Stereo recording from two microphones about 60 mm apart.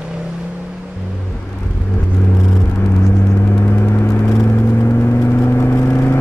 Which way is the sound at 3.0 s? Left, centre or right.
Left.